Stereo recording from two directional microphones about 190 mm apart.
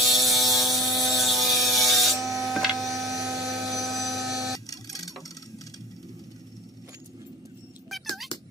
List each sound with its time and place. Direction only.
0.0 s ratchet: centre (ahead or behind)
2.3 s helicopter: centre (ahead or behind)
4.6 s printer: 20° left (ahead or behind)